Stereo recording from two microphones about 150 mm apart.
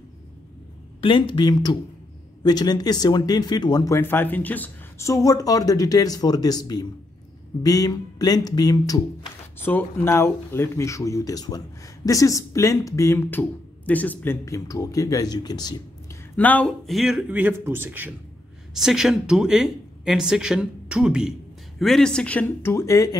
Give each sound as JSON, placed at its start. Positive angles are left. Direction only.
{"t": 1.0, "sound": "speech", "side_deg": 35}
{"t": 16.3, "sound": "a man's voice", "side_deg": 10}
{"t": 18.7, "sound": "speech", "side_deg": 0}